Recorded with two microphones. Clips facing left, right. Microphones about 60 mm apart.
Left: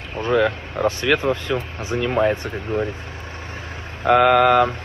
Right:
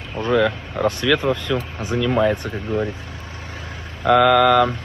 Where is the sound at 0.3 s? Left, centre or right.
Centre.